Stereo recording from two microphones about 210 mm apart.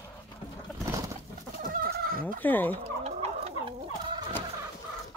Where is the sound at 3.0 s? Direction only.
30° right (ahead or behind).